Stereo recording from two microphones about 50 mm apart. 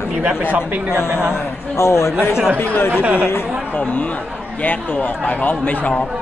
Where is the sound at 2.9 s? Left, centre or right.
Right.